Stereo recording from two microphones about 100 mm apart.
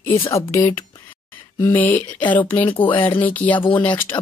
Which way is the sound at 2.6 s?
60° left (ahead or behind).